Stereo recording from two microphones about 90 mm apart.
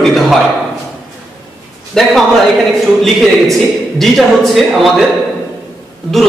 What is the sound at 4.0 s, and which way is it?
A man's voice, centre (ahead or behind).